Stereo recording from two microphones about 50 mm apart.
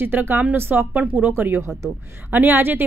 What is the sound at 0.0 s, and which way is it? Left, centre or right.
Speech, right.